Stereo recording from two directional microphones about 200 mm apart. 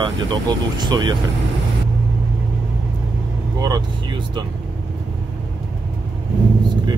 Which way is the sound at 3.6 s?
20° right (ahead or behind).